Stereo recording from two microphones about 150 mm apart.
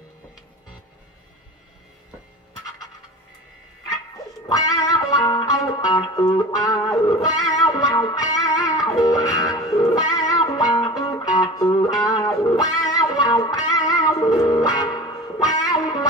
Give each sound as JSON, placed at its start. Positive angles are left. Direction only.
{"t": 4.5, "sound": "music", "side_deg": 25}